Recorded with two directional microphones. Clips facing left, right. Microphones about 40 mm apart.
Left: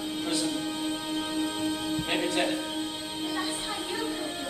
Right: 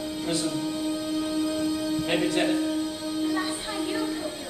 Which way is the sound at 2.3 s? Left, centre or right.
Centre.